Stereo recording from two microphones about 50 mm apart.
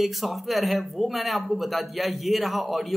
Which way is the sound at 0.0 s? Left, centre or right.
Centre.